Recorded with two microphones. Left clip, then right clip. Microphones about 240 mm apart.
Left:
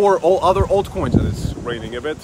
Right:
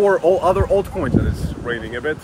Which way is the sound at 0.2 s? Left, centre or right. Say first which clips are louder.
Left 1 dB; centre.